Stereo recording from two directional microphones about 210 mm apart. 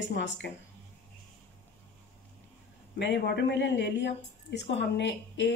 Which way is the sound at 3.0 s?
55° left (ahead or behind).